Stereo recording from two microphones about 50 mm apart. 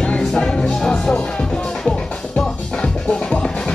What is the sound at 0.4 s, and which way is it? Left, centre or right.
Music, centre.